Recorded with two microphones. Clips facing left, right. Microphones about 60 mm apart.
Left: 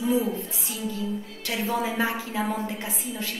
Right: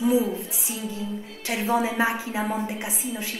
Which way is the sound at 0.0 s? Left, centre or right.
Centre.